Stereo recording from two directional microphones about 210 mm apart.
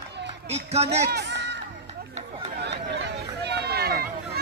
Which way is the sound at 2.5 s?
55° right (ahead or behind).